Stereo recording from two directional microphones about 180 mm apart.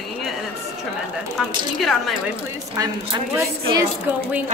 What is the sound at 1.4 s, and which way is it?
Speech, centre (ahead or behind).